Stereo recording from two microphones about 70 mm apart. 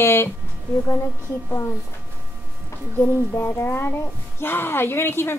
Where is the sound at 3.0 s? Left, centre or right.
Left.